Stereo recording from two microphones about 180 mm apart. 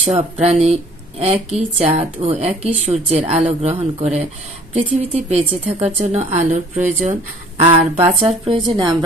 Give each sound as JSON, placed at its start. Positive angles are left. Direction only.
{"t": 0.0, "sound": "speech", "side_deg": -35}
{"t": 8.2, "sound": "speech", "side_deg": -30}